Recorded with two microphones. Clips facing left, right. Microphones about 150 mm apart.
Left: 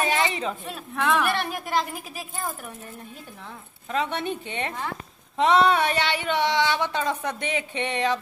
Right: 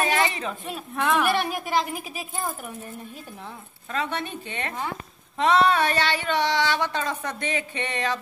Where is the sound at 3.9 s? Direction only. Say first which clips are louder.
Left 2 dB; 20° left (ahead or behind).